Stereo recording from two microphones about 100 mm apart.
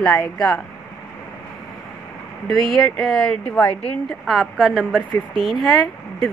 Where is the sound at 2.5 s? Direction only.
Centre (ahead or behind).